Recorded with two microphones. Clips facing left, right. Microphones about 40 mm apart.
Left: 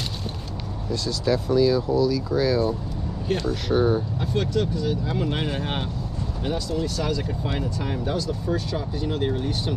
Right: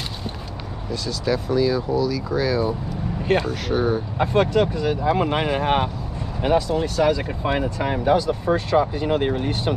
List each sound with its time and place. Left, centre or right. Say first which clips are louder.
1.0 s speech: even; centre
3.2 s speech: right 5 dB; right
3.6 s speech: even; centre
4.2 s speech: right 6 dB; right
5.3 s speech: right 7 dB; right
6.4 s speech: right 7 dB; right